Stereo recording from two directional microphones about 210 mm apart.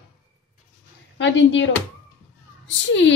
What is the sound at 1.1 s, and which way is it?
Speech, 60° left (ahead or behind).